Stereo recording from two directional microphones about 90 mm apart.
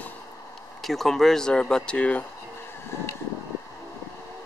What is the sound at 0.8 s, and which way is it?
Speech, centre (ahead or behind).